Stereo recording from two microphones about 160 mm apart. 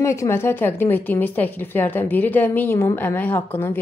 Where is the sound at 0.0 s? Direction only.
15° left (ahead or behind).